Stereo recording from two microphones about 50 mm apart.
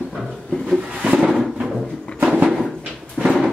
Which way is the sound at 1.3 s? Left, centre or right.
Centre.